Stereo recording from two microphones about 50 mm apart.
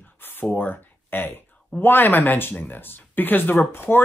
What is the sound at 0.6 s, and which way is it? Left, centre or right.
Speech, left.